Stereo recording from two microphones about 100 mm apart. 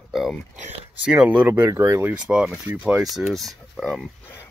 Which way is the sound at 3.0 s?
Centre (ahead or behind).